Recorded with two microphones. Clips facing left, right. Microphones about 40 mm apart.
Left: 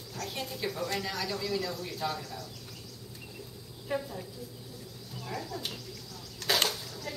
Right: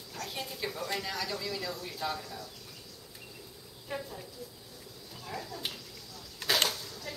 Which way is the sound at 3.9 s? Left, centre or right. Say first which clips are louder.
Left 5 dB; centre.